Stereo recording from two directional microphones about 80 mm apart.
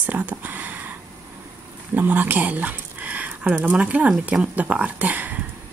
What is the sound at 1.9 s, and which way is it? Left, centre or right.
Speech, right.